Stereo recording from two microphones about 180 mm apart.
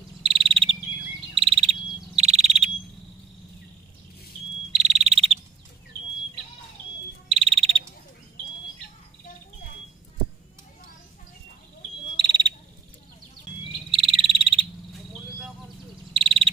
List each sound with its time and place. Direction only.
0.2 s cricket: 30° right (ahead or behind)
1.3 s bird: 30° right (ahead or behind)
4.7 s cricket: 40° right (ahead or behind)
7.2 s frog: 35° right (ahead or behind)
12.2 s frog: 25° right (ahead or behind)
13.8 s frog: 30° right (ahead or behind)
16.1 s frog: 30° right (ahead or behind)